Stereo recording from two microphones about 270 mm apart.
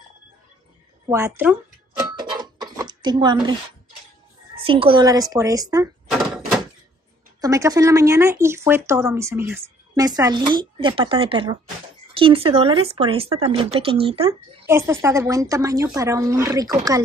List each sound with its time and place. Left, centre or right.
1.0 s speech: centre
2.0 s doorbell: centre
4.6 s speech: centre
6.0 s door: centre
7.3 s speech: centre
14.7 s speech: centre